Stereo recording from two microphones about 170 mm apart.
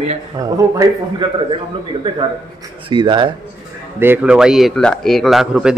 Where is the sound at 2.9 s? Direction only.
25° right (ahead or behind).